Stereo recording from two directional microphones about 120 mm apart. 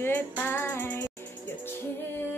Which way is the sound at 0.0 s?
15° left (ahead or behind).